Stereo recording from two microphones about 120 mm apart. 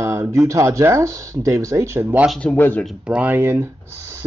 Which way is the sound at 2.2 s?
5° left (ahead or behind).